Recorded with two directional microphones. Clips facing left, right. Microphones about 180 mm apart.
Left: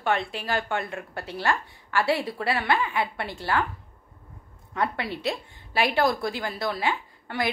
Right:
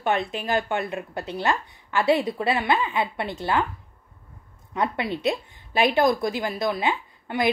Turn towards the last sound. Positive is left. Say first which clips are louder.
# right 4 dB
turn(degrees=-20)  # may be behind; listen again after turning